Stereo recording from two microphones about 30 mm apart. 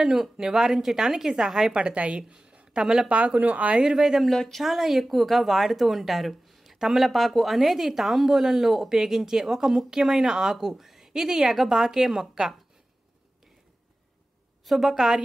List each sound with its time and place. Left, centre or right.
0.1 s speech: centre
1.7 s a woman's voice: right
2.0 s speech: right
2.8 s a woman's voice: right
3.1 s speech: right
3.9 s speech: centre
7.1 s speech: centre
14.7 s speech: centre